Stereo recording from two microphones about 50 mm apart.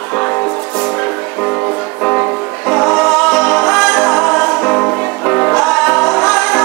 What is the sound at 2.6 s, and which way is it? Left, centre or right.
Music, centre.